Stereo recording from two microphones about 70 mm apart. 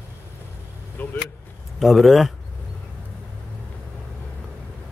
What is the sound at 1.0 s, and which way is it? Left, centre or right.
Vehicle, left.